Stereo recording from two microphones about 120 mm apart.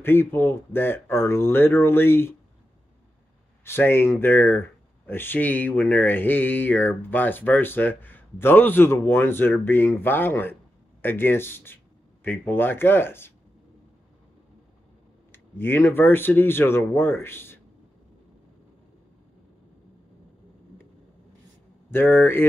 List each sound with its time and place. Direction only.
0.0 s speech: 20° left (ahead or behind)
3.6 s speech: 20° left (ahead or behind)
15.3 s speech: 20° left (ahead or behind)
21.9 s speech: 15° left (ahead or behind)